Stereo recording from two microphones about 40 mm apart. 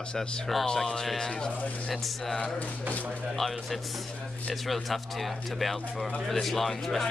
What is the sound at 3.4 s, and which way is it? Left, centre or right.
Speech, centre.